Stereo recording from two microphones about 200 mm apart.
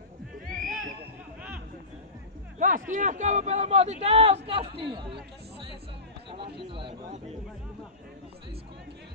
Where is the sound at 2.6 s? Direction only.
40° right (ahead or behind).